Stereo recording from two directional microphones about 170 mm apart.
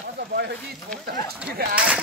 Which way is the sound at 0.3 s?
75° right (ahead or behind).